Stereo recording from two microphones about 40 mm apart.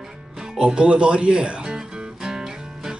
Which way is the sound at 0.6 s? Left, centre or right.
Right.